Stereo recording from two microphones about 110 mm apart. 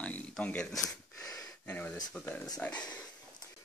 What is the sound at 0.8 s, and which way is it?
Gasp, 30° left (ahead or behind).